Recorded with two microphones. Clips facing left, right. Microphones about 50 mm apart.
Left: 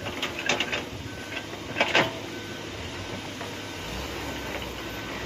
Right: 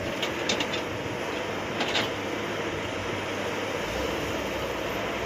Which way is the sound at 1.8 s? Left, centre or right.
Left.